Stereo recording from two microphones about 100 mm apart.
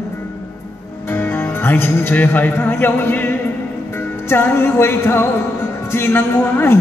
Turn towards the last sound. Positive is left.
turn(degrees=25)  # may be behind; listen again after turning